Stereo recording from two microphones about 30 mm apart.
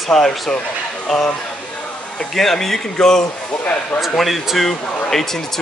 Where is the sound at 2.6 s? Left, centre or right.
Centre.